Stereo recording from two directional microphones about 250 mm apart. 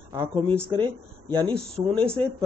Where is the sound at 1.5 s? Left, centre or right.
Centre.